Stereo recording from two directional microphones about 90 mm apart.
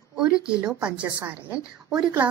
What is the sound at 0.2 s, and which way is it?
A woman's voice, 10° right (ahead or behind).